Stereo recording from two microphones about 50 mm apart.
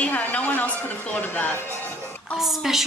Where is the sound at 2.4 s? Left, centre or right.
Centre.